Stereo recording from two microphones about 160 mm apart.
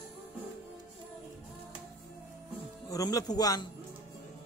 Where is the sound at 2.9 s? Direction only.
20° left (ahead or behind).